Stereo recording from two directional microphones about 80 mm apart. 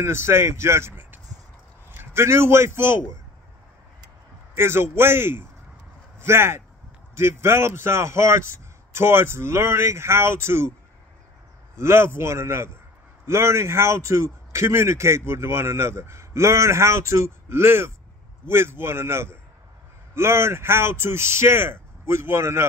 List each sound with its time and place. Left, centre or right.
0.0 s a man's voice: right
4.6 s a man's voice: right
11.7 s a man's voice: right